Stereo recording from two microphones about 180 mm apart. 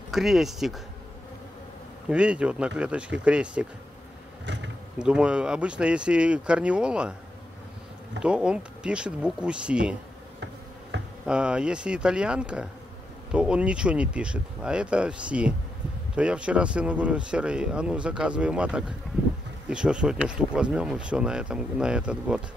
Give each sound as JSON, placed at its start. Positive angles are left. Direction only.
{"t": 0.1, "sound": "speech", "side_deg": 0}
{"t": 2.0, "sound": "speech", "side_deg": -5}
{"t": 4.5, "sound": "insect", "side_deg": -75}
{"t": 4.9, "sound": "speech", "side_deg": -5}
{"t": 8.2, "sound": "speech", "side_deg": -5}
{"t": 10.9, "sound": "a sound", "side_deg": -75}
{"t": 11.2, "sound": "speech", "side_deg": -5}